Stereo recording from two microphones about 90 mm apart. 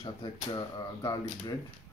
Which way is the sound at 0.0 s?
60° left (ahead or behind).